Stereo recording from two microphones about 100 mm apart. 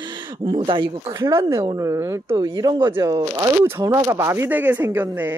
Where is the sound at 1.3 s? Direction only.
30° right (ahead or behind).